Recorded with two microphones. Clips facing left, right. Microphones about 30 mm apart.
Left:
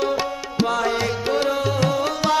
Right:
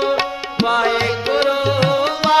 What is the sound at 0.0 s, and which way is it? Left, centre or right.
Music, right.